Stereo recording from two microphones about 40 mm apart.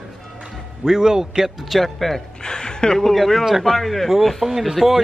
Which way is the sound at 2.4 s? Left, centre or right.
Centre.